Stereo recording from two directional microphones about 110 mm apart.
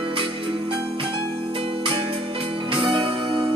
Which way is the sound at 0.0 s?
55° right (ahead or behind).